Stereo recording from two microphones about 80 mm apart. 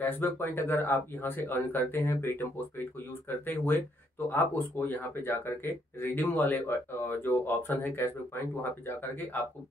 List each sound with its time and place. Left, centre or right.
0.0 s speech: left